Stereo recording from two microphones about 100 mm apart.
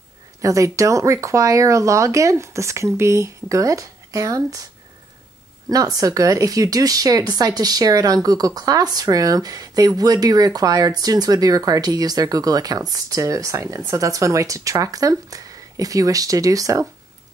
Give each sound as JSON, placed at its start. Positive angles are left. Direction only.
{"t": 0.4, "sound": "speech", "side_deg": -30}
{"t": 5.7, "sound": "speech", "side_deg": -35}